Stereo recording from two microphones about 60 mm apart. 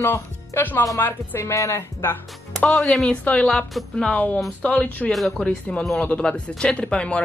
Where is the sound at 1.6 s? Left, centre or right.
Left.